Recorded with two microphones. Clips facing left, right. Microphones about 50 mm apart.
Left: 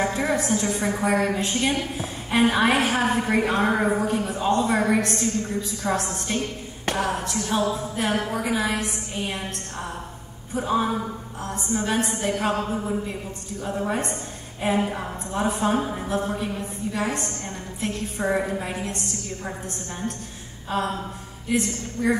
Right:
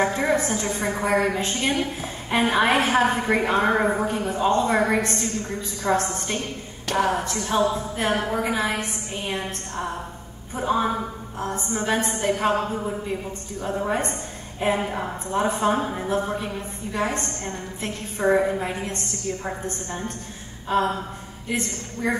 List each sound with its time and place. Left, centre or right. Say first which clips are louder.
0.1 s a woman's voice: right 1 dB; centre
4.8 s a woman's voice: left 1 dB; centre
7.0 s a woman's voice: right 5 dB; centre
10.5 s a sound: even; centre
11.7 s a woman's voice: left 1 dB; centre
13.6 s a woman's voice: right 1 dB; centre
20.6 s gasp: right 4 dB; centre
21.5 s a woman's voice: left 3 dB; centre